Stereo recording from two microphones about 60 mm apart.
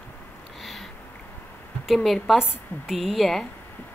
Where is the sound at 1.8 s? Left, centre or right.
Centre.